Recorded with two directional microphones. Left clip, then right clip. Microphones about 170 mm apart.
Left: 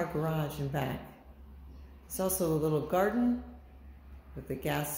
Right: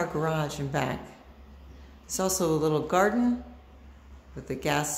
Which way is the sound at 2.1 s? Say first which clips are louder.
Right 5 dB; 15° right (ahead or behind).